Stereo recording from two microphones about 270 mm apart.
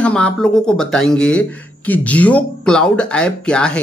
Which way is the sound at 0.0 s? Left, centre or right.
Centre.